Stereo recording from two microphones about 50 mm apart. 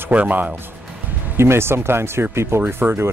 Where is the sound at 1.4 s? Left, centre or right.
Right.